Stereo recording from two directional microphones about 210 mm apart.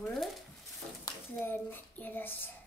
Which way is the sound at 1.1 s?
20° left (ahead or behind).